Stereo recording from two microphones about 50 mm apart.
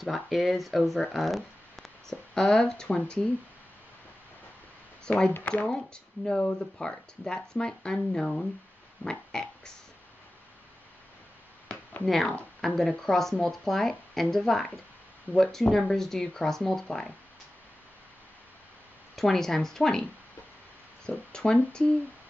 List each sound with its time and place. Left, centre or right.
0.0 s speech: centre
1.1 s a sound: centre
2.3 s speech: centre
5.0 s speech: centre
9.0 s a sound: centre
12.0 s speech: centre
19.1 s speech: centre
21.3 s speech: centre